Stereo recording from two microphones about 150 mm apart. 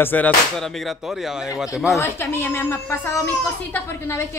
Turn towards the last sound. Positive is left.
turn(degrees=15)  # may be behind; listen again after turning